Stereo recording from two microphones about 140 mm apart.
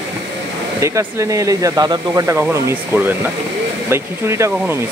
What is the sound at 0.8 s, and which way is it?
Speech, 20° right (ahead or behind).